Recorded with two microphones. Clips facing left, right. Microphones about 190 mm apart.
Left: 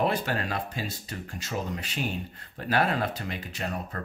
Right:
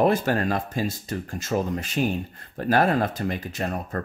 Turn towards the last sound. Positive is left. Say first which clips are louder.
# right 5 dB
turn(degrees=-45)  # may be behind; listen again after turning